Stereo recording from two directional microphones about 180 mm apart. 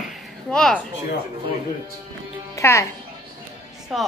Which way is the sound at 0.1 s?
Centre (ahead or behind).